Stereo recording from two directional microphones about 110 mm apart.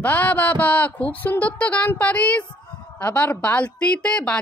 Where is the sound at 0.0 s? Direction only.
15° left (ahead or behind).